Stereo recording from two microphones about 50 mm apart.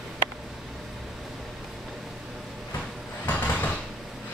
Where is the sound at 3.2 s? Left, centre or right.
Left.